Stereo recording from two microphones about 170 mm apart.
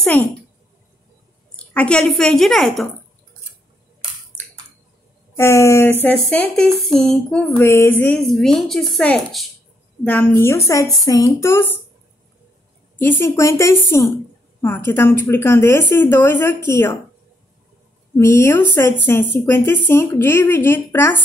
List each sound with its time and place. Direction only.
0.0 s a woman's voice: 10° left (ahead or behind)
1.7 s a sound: 5° left (ahead or behind)
5.4 s a woman's voice: 15° left (ahead or behind)
6.0 s a sound: 5° left (ahead or behind)
10.0 s a woman's voice: 10° left (ahead or behind)
13.0 s a woman's voice: 15° left (ahead or behind)
18.1 s a woman's voice: 15° left (ahead or behind)